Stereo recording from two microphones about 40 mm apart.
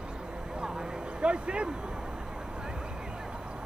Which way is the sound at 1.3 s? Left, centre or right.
Right.